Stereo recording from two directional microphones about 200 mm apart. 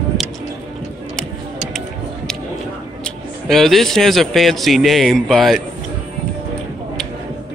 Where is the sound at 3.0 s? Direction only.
Centre (ahead or behind).